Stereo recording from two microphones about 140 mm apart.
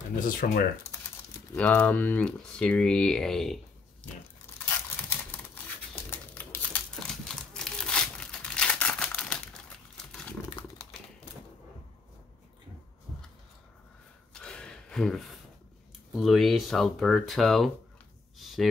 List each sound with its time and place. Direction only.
0.2 s speech: 90° left
1.5 s speech: 10° left (ahead or behind)
6.0 s crumpling: 15° left (ahead or behind)
14.3 s gasp: 5° left (ahead or behind)
16.2 s speech: centre (ahead or behind)
18.4 s a sound: centre (ahead or behind)